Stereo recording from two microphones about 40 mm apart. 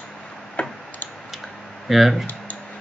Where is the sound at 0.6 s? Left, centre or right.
Left.